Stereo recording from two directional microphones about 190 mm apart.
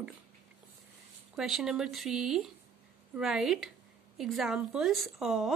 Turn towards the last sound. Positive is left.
turn(degrees=0)  # may be behind; listen again after turning